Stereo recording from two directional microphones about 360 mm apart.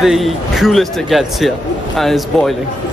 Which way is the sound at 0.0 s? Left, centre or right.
Centre.